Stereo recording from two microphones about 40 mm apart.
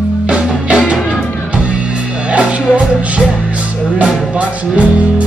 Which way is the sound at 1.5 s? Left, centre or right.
Right.